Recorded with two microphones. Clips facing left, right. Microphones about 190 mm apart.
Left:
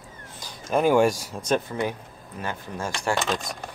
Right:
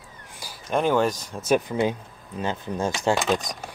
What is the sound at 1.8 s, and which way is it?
Speech, 20° right (ahead or behind).